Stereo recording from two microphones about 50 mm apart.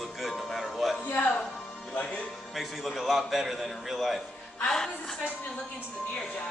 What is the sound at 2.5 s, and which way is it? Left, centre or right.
A man's voice, centre.